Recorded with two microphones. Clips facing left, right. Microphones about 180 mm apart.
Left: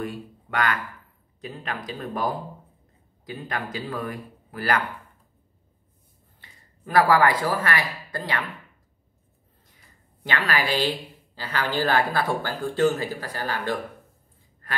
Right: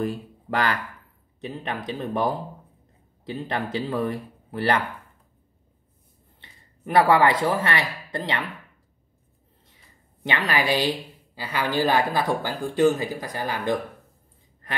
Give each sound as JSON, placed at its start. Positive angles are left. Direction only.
{"t": 0.0, "sound": "speech", "side_deg": -35}
{"t": 6.4, "sound": "speech", "side_deg": -20}
{"t": 10.2, "sound": "a woman's voice", "side_deg": -20}